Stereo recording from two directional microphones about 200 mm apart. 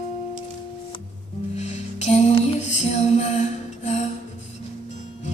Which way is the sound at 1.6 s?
35° left (ahead or behind).